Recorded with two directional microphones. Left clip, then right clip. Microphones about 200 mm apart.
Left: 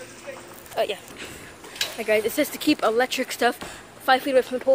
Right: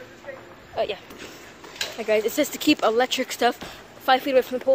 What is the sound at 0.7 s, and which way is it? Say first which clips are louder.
A woman's voice: left 1 dB; centre (ahead or behind).